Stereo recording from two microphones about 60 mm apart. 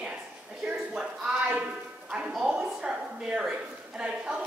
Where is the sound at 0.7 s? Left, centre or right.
Centre.